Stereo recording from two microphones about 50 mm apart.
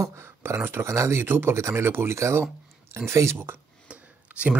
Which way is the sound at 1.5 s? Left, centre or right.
Right.